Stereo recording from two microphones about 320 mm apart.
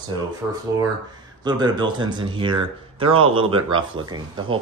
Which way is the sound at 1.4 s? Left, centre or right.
Centre.